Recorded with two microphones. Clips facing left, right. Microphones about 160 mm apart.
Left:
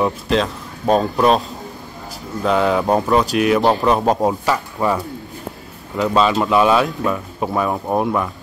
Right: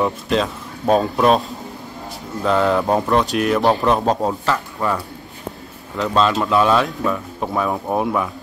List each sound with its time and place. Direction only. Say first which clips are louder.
0.0 s speech: left 1 dB; centre (ahead or behind)
2.4 s speech: even; centre (ahead or behind)